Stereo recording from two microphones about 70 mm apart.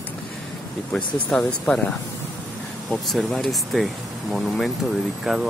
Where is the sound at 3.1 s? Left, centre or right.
Centre.